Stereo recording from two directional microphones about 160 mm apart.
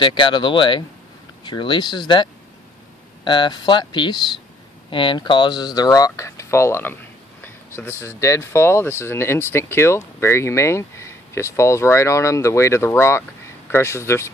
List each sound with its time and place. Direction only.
0.0 s speech: 30° left (ahead or behind)
3.3 s speech: 30° left (ahead or behind)